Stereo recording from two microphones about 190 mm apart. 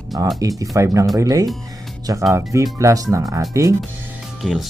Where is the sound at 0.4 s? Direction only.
20° right (ahead or behind).